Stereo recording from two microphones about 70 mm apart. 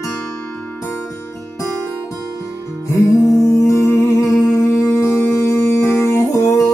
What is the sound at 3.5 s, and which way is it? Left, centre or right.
Music, left.